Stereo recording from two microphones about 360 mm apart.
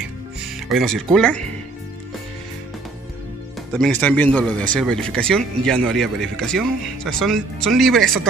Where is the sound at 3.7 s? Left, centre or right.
Centre.